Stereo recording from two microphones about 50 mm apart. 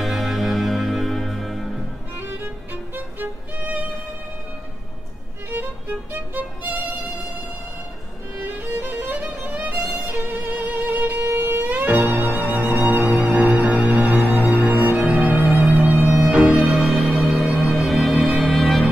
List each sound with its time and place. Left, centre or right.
0.0 s music: centre
2.1 s music: right
3.2 s music: right
5.5 s music: right
8.4 s music: right
11.2 s music: right
11.7 s music: right
16.2 s music: centre
16.6 s music: centre